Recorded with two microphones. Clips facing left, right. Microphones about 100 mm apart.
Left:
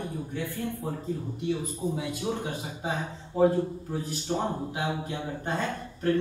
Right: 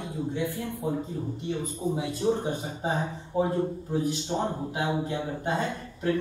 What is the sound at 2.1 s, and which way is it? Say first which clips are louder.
Speech: right 5 dB; 15° left (ahead or behind).